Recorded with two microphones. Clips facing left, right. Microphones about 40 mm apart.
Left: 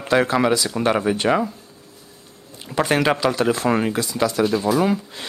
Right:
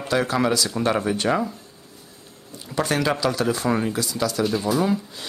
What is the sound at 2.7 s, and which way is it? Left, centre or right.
Speech, left.